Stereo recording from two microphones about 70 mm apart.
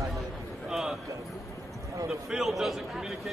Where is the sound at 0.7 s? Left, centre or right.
Centre.